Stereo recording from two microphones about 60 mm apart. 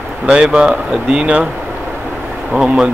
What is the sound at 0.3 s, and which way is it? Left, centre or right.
Speech, centre.